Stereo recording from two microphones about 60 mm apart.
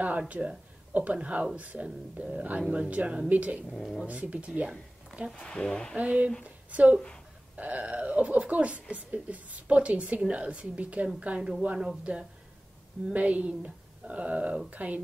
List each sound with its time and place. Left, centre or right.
0.3 s speech: right
3.7 s speech: centre
4.0 s speech: right
5.4 s speech: centre
5.9 s a woman's voice: right